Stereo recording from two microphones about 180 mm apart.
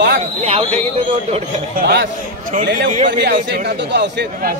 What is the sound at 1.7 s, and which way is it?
A man's voice, 65° right (ahead or behind).